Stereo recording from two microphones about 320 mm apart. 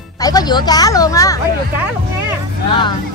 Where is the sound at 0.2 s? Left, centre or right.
Centre.